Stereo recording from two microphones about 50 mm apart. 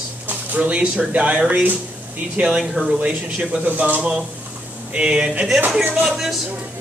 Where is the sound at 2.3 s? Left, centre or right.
Centre.